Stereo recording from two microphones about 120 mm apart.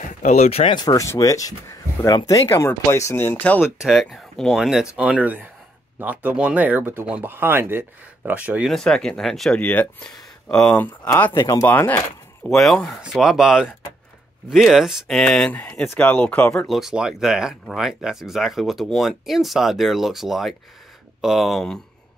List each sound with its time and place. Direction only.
0.0 s speech: 90° left; by 0.7 s 55° left (ahead or behind)
0.7 s speech: 30° left (ahead or behind); by 3.7 s 15° left (ahead or behind)
3.8 s speech: centre (ahead or behind)
8.6 s speech: 5° left (ahead or behind)
11.4 s speech: 30° left (ahead or behind)
11.7 s speech: 15° left (ahead or behind)
12.4 s speech: 5° left (ahead or behind)
15.5 s speech: 15° left (ahead or behind)
16.6 s speech: centre (ahead or behind)